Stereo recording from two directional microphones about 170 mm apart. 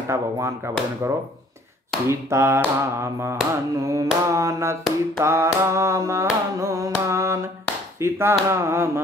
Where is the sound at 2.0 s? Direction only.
15° right (ahead or behind).